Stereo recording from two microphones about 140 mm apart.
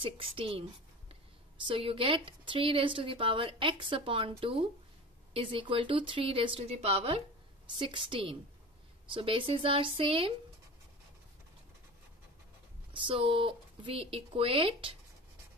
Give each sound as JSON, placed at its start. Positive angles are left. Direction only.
{"t": 0.0, "sound": "speech", "side_deg": -40}
{"t": 1.7, "sound": "speech", "side_deg": -40}
{"t": 13.0, "sound": "speech", "side_deg": -40}